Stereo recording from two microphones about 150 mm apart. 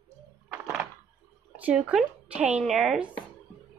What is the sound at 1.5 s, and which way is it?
Speech, 10° right (ahead or behind).